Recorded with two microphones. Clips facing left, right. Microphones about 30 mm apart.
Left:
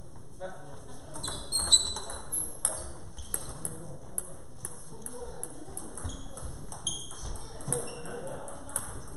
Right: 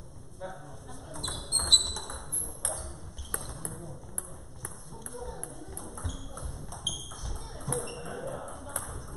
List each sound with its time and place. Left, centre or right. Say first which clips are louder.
0.4 s a sound: even; centre
1.1 s ping: right 1 dB; centre
3.3 s a sound: right 2 dB; centre
5.1 s ping: right 2 dB; centre
6.3 s ping: right 2 dB; centre
6.9 s ping: right 2 dB; centre